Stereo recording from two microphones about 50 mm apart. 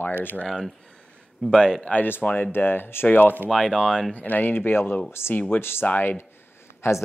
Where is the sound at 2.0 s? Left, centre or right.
Left.